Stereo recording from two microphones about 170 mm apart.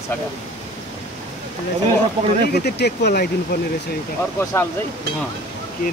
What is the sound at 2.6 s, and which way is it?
Speech, 75° left (ahead or behind).